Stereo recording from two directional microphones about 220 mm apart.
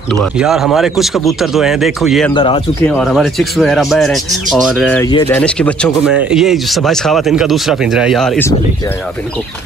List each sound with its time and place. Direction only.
0.1 s speech: centre (ahead or behind)
2.3 s speech: 20° left (ahead or behind)
3.0 s speech: centre (ahead or behind)